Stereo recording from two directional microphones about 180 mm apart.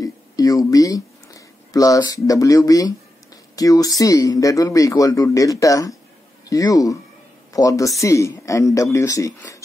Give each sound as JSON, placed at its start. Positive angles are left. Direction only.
{"t": 0.0, "sound": "speech", "side_deg": 20}